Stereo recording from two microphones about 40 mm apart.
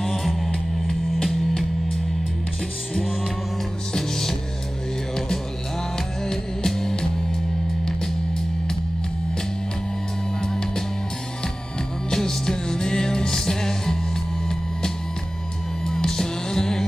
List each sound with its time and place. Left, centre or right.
0.0 s music: centre
3.9 s music: centre
6.2 s music: centre
10.4 s music: centre
12.1 s music: centre
15.8 s music: centre